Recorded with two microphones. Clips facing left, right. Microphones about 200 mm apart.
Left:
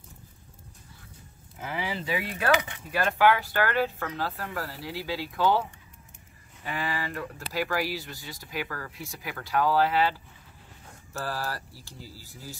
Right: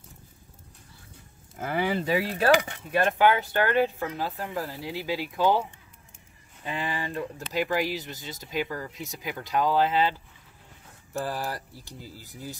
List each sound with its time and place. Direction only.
1.6 s speech: 50° right (ahead or behind); by 2.8 s 35° right (ahead or behind)
2.9 s speech: 20° right (ahead or behind)
11.1 s speech: 20° right (ahead or behind)